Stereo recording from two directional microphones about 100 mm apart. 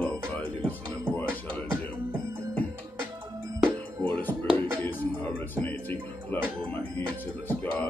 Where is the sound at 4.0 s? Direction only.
15° left (ahead or behind).